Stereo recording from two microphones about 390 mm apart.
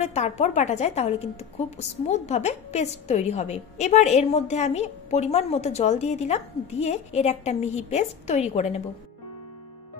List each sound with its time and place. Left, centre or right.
0.0 s a woman's voice: centre